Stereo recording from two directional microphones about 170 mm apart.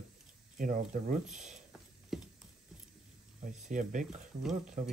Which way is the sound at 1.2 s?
5° right (ahead or behind).